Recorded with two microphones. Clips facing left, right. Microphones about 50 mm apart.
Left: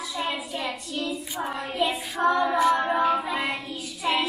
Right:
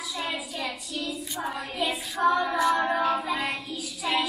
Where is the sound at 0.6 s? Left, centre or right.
Left.